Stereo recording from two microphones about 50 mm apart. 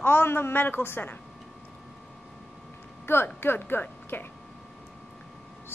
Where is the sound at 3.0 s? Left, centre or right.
Left.